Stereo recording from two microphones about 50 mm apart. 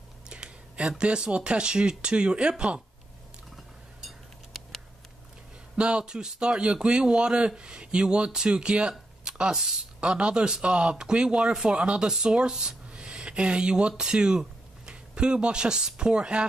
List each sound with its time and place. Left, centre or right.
0.3 s speech: centre
5.8 s a man's voice: centre
9.2 s a sound: centre
10.0 s a man's voice: right